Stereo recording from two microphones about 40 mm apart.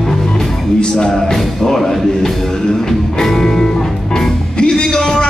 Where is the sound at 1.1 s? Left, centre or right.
Centre.